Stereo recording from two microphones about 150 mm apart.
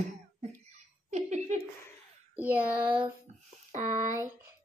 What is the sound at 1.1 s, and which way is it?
Speech, 50° right (ahead or behind).